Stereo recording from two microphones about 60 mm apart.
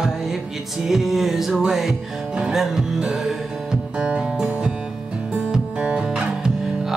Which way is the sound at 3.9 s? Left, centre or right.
Centre.